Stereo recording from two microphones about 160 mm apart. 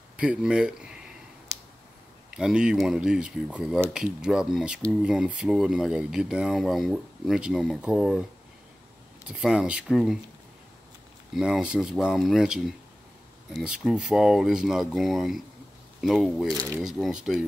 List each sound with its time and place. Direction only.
0.2 s speech: 5° right (ahead or behind)
2.3 s speech: 5° right (ahead or behind)
9.3 s speech: 5° right (ahead or behind)
11.3 s speech: 5° right (ahead or behind)
16.5 s speech: 20° right (ahead or behind)
16.8 s speech: 5° right (ahead or behind)